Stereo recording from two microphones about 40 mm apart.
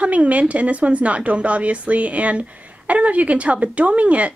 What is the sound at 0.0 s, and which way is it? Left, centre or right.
Speech, right.